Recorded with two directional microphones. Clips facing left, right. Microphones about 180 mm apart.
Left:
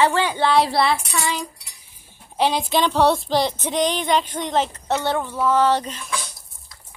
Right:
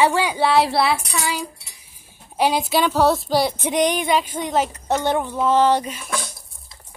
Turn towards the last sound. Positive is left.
turn(degrees=-50)  # may be behind; listen again after turning